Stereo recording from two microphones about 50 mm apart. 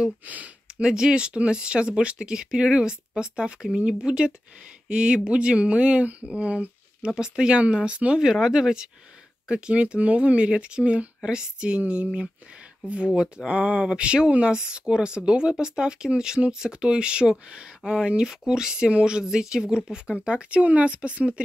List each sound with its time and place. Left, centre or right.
0.2 s speech: right
0.7 s speech: centre
8.2 s speech: centre